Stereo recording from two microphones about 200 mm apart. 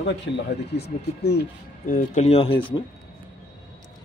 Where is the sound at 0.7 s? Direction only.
55° left (ahead or behind).